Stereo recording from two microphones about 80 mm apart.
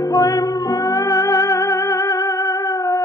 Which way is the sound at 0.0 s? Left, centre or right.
Left.